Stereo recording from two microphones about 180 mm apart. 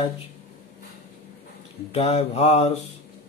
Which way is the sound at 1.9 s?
35° left (ahead or behind).